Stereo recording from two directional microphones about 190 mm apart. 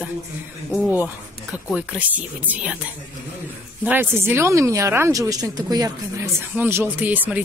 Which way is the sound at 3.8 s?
10° right (ahead or behind).